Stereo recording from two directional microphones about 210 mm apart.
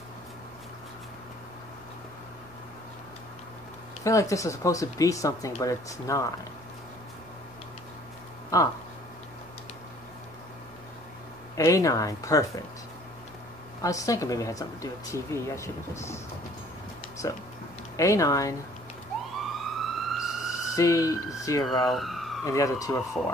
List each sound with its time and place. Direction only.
4.0 s speech: 15° left (ahead or behind)
8.5 s speech: 15° left (ahead or behind)
11.5 s speech: 15° left (ahead or behind)
13.8 s speech: 15° left (ahead or behind)
17.2 s speech: 15° left (ahead or behind)
19.4 s emergency vehicle: centre (ahead or behind)
20.7 s speech: 15° left (ahead or behind)
21.6 s speech: centre (ahead or behind)
22.4 s speech: 15° left (ahead or behind)